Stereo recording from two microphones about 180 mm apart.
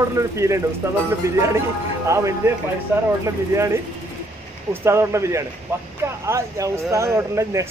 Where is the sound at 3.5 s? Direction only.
15° right (ahead or behind).